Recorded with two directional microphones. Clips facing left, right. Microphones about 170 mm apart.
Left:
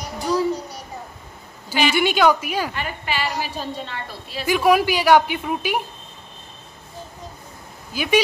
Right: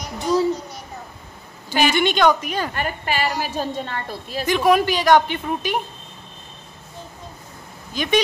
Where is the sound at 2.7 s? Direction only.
45° right (ahead or behind).